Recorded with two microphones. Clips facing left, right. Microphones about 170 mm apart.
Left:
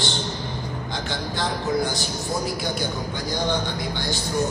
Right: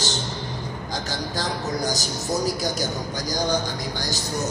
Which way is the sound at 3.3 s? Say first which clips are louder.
Right 1 dB; 40° right (ahead or behind).